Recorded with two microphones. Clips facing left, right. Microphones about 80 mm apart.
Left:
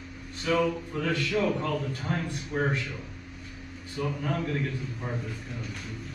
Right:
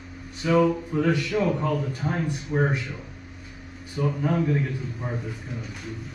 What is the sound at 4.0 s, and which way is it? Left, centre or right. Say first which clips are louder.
A man's voice: right 6 dB; centre.